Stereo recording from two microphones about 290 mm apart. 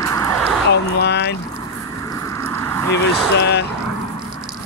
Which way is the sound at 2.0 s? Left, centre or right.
Centre.